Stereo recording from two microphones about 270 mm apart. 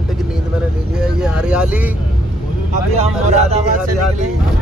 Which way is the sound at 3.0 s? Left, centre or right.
Right.